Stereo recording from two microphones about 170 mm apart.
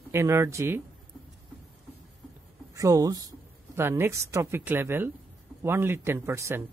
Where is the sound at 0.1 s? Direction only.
15° right (ahead or behind).